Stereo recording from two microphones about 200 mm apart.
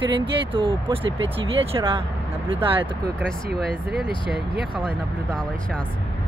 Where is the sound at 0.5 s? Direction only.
25° right (ahead or behind).